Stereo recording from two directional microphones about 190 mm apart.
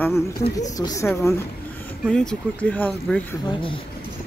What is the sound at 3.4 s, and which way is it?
Speech, 25° left (ahead or behind).